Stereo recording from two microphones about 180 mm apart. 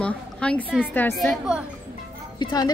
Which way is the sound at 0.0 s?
5° left (ahead or behind).